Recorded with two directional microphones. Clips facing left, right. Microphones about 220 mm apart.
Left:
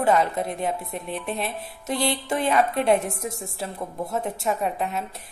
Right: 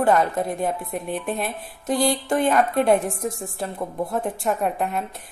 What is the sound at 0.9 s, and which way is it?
Speech, 5° right (ahead or behind).